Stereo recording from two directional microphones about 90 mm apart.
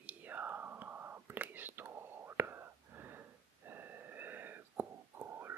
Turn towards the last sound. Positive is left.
turn(degrees=-30)  # may be behind; listen again after turning